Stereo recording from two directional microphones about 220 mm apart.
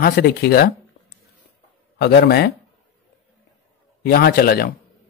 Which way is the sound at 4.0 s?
45° left (ahead or behind).